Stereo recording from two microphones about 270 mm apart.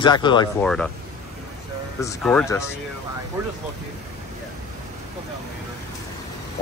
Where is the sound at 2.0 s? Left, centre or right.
Centre.